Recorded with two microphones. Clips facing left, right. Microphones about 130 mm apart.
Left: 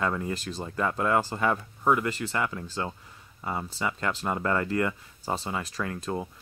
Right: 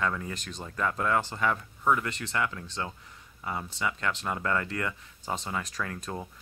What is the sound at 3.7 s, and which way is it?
Speech, 35° left (ahead or behind).